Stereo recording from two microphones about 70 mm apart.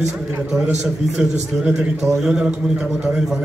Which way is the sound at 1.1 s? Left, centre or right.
Centre.